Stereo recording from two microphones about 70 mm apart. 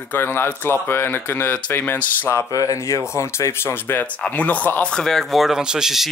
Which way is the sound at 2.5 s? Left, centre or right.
Left.